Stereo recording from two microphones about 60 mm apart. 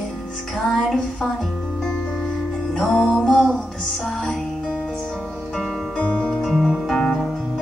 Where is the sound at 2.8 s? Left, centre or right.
Centre.